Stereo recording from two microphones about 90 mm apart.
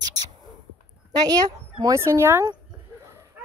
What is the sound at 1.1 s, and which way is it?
Speech, 45° right (ahead or behind).